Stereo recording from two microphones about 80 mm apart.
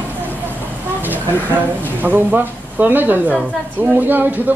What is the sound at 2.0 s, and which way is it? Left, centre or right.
Speech, right.